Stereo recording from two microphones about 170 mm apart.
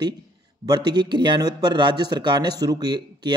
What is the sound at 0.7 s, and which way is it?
Speech, 25° right (ahead or behind).